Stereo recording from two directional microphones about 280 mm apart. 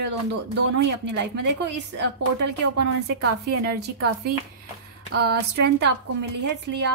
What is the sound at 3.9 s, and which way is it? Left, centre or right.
Speech, right.